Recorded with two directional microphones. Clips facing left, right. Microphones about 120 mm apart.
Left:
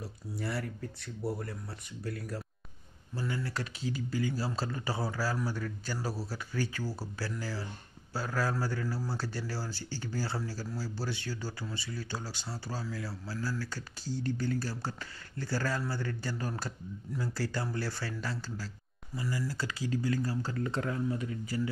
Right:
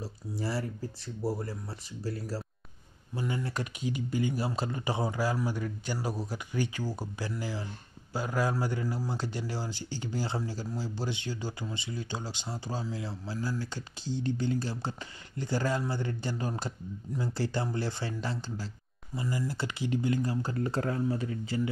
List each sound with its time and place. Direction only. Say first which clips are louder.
0.0 s a man's voice: right 3 dB; 30° right (ahead or behind)
3.2 s a man's voice: right 2 dB; 20° right (ahead or behind)
20.5 s speech: right 3 dB; 35° right (ahead or behind)